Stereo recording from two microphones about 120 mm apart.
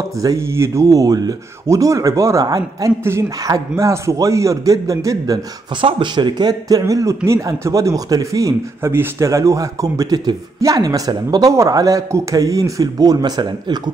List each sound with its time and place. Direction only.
0.2 s speech: 25° right (ahead or behind)
5.8 s speech: 45° right (ahead or behind)